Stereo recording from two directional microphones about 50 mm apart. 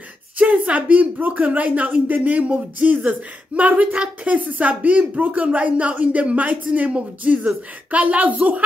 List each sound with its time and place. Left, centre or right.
0.4 s a woman's voice: right